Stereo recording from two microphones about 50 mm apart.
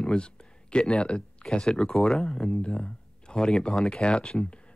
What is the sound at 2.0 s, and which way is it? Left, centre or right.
Speech, centre.